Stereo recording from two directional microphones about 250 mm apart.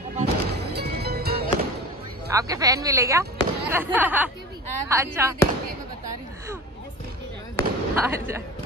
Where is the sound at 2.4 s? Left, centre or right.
Centre.